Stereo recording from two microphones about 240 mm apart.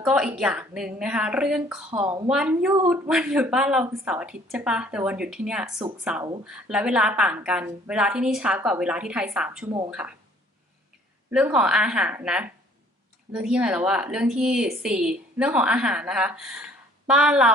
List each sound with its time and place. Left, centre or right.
0.0 s a woman's voice: centre
1.9 s speech: centre
2.2 s a woman's voice: centre
11.2 s a woman's voice: centre